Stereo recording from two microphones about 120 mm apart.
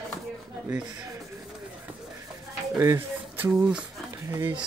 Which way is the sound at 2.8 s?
20° right (ahead or behind).